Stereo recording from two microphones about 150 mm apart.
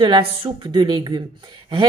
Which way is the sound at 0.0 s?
35° right (ahead or behind).